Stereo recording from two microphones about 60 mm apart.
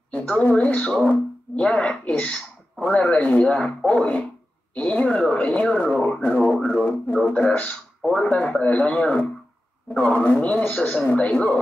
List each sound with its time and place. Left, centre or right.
0.4 s speech: left
3.5 s speech: centre